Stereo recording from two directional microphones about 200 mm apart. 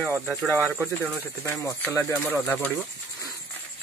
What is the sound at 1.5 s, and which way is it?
Speech, 15° left (ahead or behind).